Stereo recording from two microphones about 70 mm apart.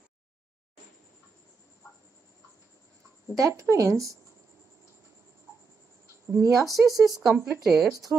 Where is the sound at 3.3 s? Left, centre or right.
Right.